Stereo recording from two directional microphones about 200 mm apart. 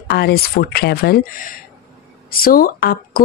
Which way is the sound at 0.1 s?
50° left (ahead or behind).